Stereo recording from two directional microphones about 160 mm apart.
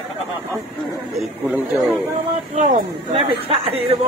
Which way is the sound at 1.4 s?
10° right (ahead or behind).